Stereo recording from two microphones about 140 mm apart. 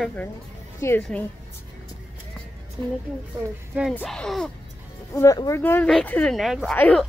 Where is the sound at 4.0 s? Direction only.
Centre (ahead or behind).